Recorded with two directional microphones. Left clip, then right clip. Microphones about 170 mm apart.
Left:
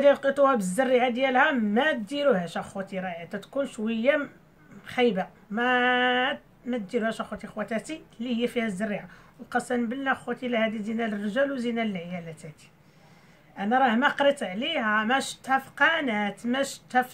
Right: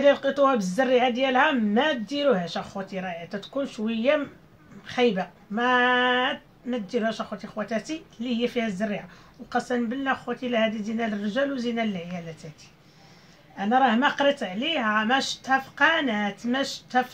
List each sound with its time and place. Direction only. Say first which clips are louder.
0.0 s speech: even; 15° left (ahead or behind)
13.6 s speech: right 2 dB; 15° left (ahead or behind)